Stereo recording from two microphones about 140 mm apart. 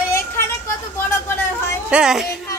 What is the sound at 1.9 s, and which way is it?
Speech, 5° right (ahead or behind).